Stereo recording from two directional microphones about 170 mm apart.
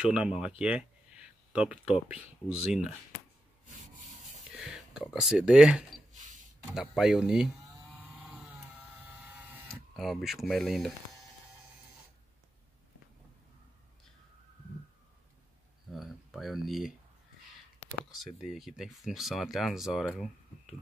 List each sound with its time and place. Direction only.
0.0 s speech: 5° right (ahead or behind)
4.5 s speech: 5° right (ahead or behind)
8.0 s vehicle: 5° right (ahead or behind)
9.7 s speech: centre (ahead or behind)
15.9 s speech: centre (ahead or behind)
18.1 s speech: centre (ahead or behind)